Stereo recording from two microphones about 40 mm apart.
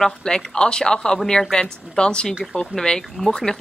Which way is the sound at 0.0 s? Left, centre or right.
Centre.